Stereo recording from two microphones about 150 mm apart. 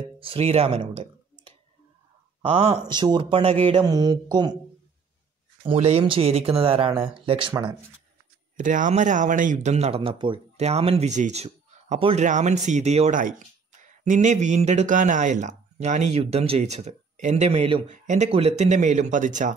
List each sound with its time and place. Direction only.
0.2 s speech: 40° right (ahead or behind)
2.4 s speech: 40° right (ahead or behind)
3.8 s speech: 25° right (ahead or behind)
5.6 s speech: 40° right (ahead or behind)
8.5 s speech: 60° right (ahead or behind)
13.2 s speech: 55° right (ahead or behind); by 17.8 s 40° right (ahead or behind)
17.8 s speech: 55° right (ahead or behind)